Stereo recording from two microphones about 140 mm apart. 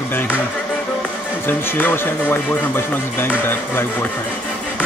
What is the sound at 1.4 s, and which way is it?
Speech, 15° left (ahead or behind).